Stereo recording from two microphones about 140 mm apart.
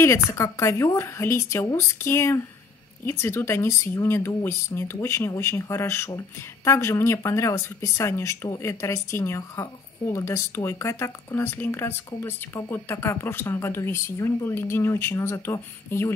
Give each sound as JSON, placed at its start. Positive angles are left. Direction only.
{"t": 0.0, "sound": "speech", "side_deg": 20}